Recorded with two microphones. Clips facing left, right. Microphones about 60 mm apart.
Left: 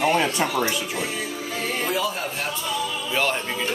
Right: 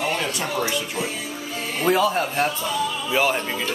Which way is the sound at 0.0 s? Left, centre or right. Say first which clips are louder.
Left 4 dB; left.